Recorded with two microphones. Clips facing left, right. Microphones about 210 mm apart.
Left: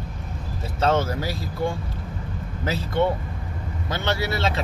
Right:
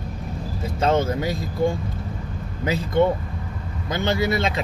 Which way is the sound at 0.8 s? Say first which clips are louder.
Right 2 dB; 20° right (ahead or behind).